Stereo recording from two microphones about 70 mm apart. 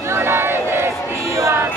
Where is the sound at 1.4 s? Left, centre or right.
Right.